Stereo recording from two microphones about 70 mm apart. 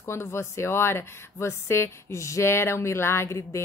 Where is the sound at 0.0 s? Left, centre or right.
Left.